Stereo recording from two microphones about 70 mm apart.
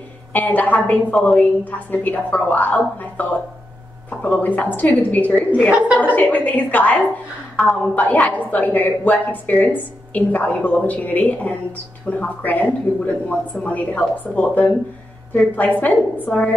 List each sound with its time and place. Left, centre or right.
0.3 s a woman's voice: left
5.7 s a woman's voice: centre
6.1 s a woman's voice: left